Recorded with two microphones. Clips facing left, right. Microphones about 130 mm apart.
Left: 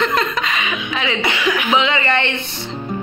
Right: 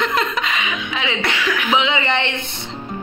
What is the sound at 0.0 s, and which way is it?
Chuckle, 15° right (ahead or behind).